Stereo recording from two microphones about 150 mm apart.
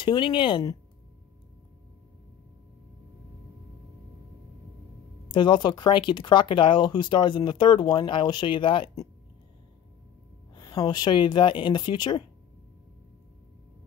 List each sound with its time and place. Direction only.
0.0 s speech: 30° left (ahead or behind)
5.3 s speech: 30° left (ahead or behind)
10.5 s speech: 30° left (ahead or behind)